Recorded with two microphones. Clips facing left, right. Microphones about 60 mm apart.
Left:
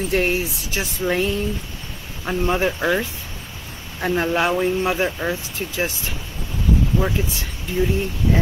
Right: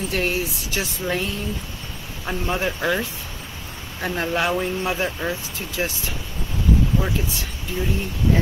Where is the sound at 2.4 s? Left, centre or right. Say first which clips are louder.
Left 4 dB; centre.